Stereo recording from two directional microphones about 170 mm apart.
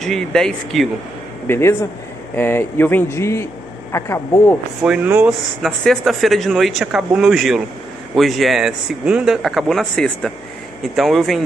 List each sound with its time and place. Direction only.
0.0 s speech: 5° left (ahead or behind)
1.5 s speech: 15° left (ahead or behind)
4.8 s speech: 10° right (ahead or behind)